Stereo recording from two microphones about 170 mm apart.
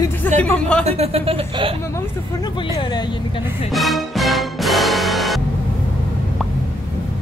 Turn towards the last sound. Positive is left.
turn(degrees=0)  # may be behind; listen again after turning